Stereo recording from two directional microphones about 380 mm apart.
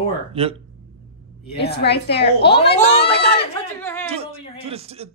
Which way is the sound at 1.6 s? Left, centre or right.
Left.